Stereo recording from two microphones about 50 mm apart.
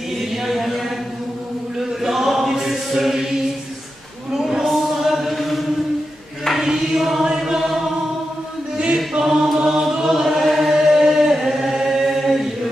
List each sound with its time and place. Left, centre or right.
0.2 s a sound: centre
2.0 s chant: centre
4.5 s a sound: centre
6.4 s chant: centre
8.7 s choir: right
9.2 s choir: centre